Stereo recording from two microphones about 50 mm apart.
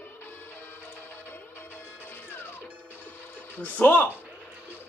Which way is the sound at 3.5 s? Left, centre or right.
Left.